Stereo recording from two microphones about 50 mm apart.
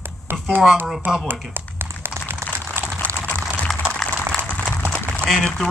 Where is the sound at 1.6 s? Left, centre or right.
Right.